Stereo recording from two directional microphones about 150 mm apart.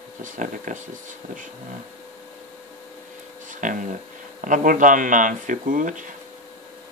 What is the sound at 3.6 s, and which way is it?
Speech, 60° right (ahead or behind).